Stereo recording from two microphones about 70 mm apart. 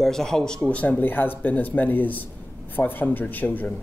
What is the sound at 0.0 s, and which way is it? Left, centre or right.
Speech, centre.